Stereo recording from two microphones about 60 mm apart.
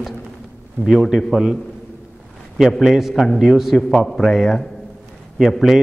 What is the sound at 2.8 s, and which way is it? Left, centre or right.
A man's voice, centre.